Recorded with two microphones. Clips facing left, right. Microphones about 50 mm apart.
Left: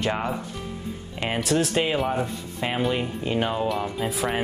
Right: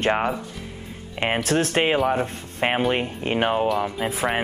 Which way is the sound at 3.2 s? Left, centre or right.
Right.